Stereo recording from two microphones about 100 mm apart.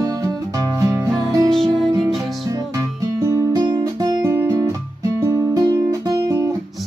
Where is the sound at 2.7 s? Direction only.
30° right (ahead or behind).